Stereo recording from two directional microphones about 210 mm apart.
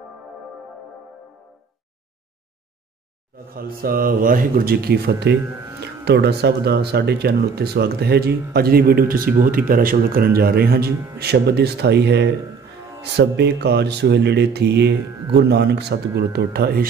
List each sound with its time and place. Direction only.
3.5 s speech: 45° right (ahead or behind)